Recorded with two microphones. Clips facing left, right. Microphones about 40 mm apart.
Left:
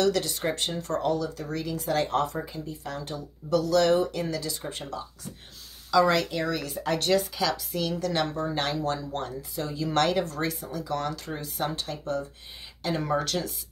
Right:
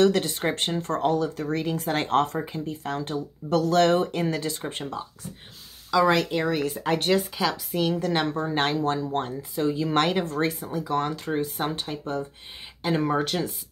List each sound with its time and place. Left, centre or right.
0.0 s speech: right
5.9 s speech: centre